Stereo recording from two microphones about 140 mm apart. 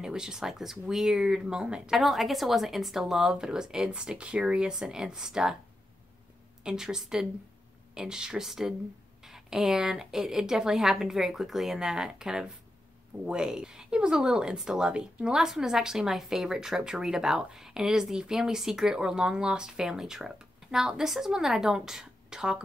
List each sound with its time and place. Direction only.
0.0 s speech: 5° right (ahead or behind)
6.6 s speech: 5° right (ahead or behind)